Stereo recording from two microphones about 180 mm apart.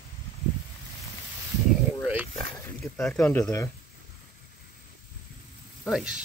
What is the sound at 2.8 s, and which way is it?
Speech, centre (ahead or behind).